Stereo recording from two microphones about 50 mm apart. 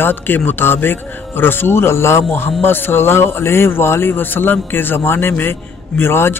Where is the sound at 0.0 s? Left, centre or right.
Left.